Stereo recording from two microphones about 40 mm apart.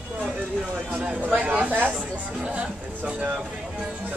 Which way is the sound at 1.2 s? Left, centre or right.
Right.